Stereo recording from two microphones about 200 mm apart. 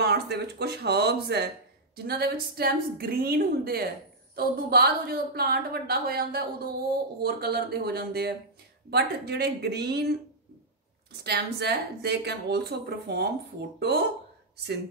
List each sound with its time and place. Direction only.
0.0 s a woman's voice: 55° right (ahead or behind)